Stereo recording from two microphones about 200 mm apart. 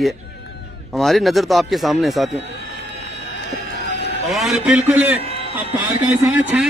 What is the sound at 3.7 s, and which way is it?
Sheep, 60° left (ahead or behind).